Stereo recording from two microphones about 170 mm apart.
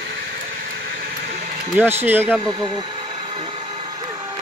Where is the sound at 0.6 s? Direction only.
65° right (ahead or behind).